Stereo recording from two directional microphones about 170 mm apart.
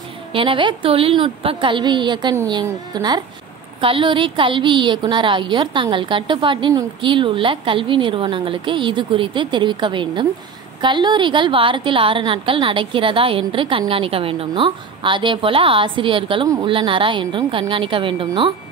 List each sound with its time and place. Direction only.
0.3 s a woman's voice: 30° right (ahead or behind)